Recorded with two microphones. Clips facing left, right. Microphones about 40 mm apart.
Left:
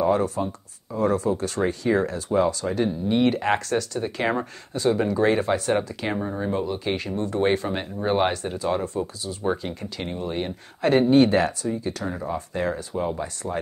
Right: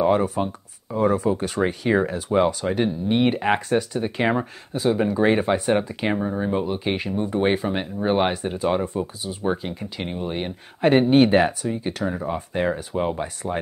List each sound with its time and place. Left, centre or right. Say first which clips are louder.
0.0 s speech: right 2 dB; centre
6.1 s speech: right 1 dB; centre
6.6 s speech: right 2 dB; right
12.0 s speech: right 4 dB; centre
12.5 s speech: right 4 dB; right